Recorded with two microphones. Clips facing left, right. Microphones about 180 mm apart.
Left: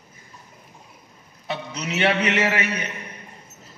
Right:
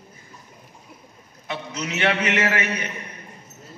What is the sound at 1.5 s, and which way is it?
A man's voice, 30° left (ahead or behind).